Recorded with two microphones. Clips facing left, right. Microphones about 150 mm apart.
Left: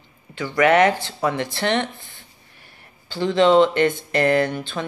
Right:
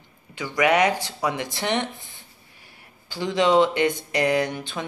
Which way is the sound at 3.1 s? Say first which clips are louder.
Left 4 dB; 10° right (ahead or behind).